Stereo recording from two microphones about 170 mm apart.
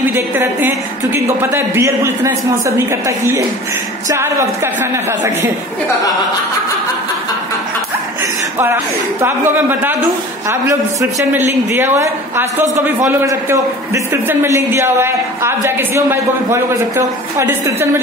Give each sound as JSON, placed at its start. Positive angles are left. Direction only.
{"t": 0.1, "sound": "a man's voice", "side_deg": -15}
{"t": 9.2, "sound": "a man's voice", "side_deg": -10}